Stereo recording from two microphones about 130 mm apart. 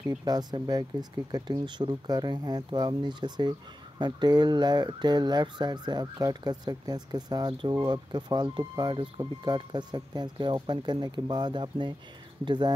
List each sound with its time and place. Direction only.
0.2 s fowl: 30° right (ahead or behind)